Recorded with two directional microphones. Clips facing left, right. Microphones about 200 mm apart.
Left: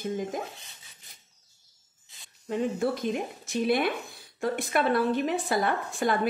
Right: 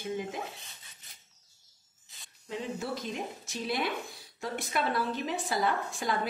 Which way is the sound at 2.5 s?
50° left (ahead or behind).